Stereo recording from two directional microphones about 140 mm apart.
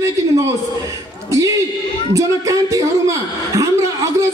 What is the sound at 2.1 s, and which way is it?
A man's voice, 25° right (ahead or behind).